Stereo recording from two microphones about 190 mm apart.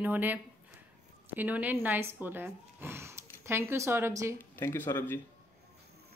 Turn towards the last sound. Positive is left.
turn(degrees=10)  # may be behind; listen again after turning